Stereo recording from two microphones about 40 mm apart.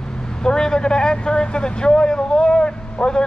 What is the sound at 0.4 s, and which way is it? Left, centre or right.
Speech, centre.